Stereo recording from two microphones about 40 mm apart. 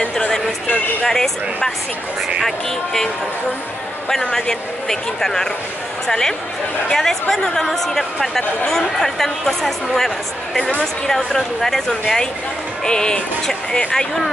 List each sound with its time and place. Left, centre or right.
1.0 s speech: centre
4.1 s speech: centre
10.6 s speech: left
11.1 s speech: centre